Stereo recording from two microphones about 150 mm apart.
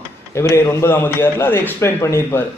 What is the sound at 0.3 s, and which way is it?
Speech, 20° left (ahead or behind).